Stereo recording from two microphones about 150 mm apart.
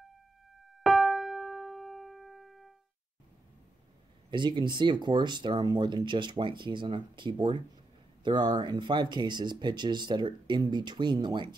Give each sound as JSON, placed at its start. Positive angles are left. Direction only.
{"t": 0.8, "sound": "music", "side_deg": 0}
{"t": 4.3, "sound": "speech", "side_deg": -30}